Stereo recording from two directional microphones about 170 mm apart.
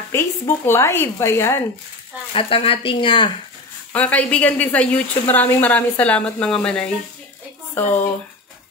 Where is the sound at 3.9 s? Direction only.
10° left (ahead or behind).